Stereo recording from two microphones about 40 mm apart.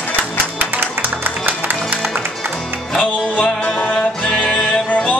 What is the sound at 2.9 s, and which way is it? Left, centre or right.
Music, left.